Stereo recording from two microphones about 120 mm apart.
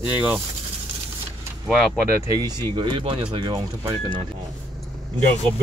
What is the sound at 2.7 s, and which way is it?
Speech, 45° right (ahead or behind).